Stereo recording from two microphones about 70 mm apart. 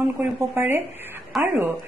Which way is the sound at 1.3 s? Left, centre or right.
Centre.